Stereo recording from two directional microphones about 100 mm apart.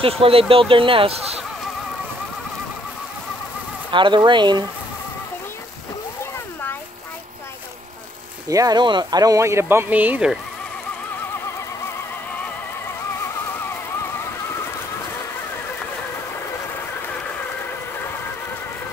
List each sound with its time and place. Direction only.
0.0 s speech: 65° right (ahead or behind)
3.9 s speech: 50° right (ahead or behind)
8.5 s speech: 40° right (ahead or behind); by 10.3 s 15° right (ahead or behind)